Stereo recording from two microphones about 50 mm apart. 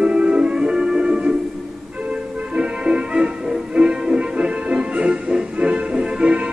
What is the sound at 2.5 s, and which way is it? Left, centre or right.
Music, right.